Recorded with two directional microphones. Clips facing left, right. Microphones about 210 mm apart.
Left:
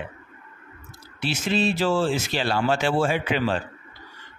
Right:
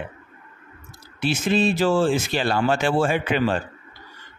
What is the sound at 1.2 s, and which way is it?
A man's voice, 50° right (ahead or behind).